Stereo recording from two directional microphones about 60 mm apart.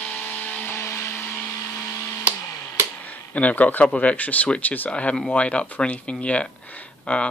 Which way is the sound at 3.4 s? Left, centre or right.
Left.